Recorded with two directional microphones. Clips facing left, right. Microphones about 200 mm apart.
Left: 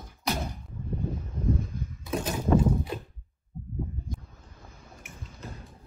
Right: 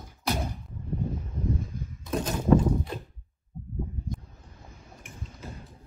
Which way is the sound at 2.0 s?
5° left (ahead or behind).